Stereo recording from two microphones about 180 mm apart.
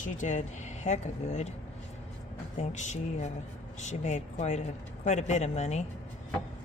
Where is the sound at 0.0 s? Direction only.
45° left (ahead or behind).